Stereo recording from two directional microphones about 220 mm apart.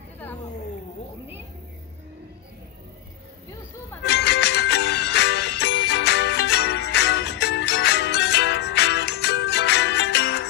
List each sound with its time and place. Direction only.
4.1 s music: 50° left (ahead or behind)